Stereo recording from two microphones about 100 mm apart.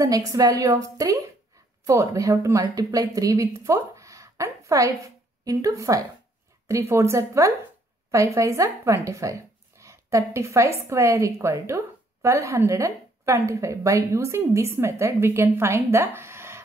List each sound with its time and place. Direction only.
0.0 s a woman's voice: 35° right (ahead or behind)